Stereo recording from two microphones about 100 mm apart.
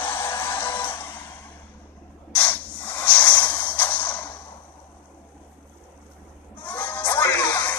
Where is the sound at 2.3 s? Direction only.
15° left (ahead or behind).